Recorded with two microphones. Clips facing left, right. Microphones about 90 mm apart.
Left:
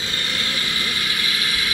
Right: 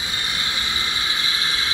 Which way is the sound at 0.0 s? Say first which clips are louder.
Left 1 dB; 20° right (ahead or behind).